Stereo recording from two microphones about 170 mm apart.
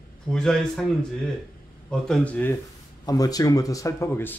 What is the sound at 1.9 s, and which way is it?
Speech, 5° left (ahead or behind).